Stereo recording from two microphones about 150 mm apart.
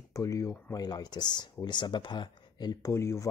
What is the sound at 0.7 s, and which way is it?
Speech, 25° left (ahead or behind).